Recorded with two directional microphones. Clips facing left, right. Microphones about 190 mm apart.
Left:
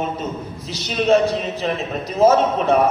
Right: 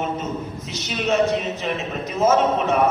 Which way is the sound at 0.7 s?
35° left (ahead or behind).